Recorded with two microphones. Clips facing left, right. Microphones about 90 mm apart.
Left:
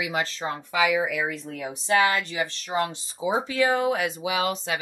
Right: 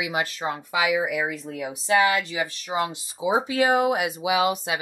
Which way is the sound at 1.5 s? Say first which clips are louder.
Right 2 dB; 5° right (ahead or behind).